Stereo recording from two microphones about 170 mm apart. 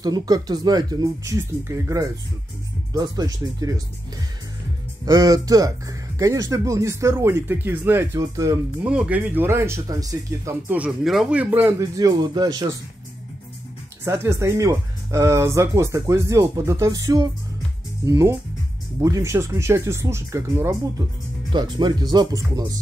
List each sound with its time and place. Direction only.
0.0 s speech: 25° right (ahead or behind)
5.0 s speech: 20° right (ahead or behind)
8.8 s speech: 5° right (ahead or behind)
10.7 s speech: 5° right (ahead or behind); by 12.7 s 20° right (ahead or behind)
14.0 s speech: 15° right (ahead or behind)
21.5 s speech: 25° right (ahead or behind)